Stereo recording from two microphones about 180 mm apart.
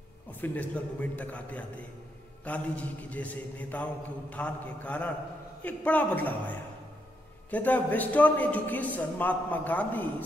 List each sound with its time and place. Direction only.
0.3 s a man's voice: 10° left (ahead or behind)
7.5 s a man's voice: 10° left (ahead or behind)